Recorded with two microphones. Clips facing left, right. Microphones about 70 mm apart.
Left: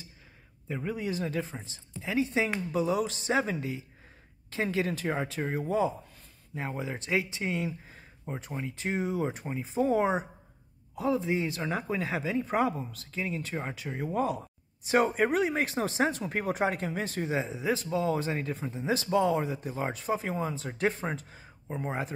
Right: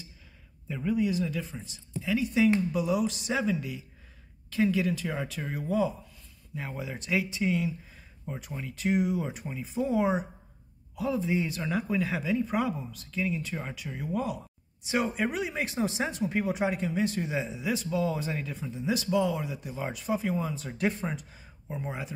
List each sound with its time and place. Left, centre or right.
0.7 s speech: left
11.0 s speech: left